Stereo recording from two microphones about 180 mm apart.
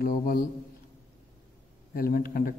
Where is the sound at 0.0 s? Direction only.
50° left (ahead or behind).